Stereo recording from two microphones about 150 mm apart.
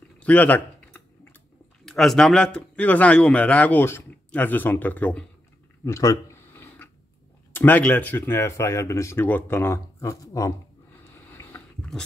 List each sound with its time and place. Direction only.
0.2 s typing: 10° left (ahead or behind)
1.9 s a man's voice: 5° left (ahead or behind)
5.9 s a sound: 20° left (ahead or behind)
7.5 s a man's voice: 10° left (ahead or behind)